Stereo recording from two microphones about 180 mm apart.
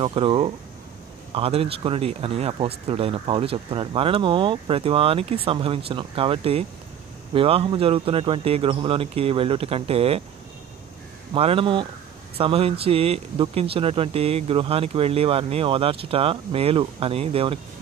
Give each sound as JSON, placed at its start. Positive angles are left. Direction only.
{"t": 0.0, "sound": "speech", "side_deg": -30}
{"t": 11.3, "sound": "speech", "side_deg": -30}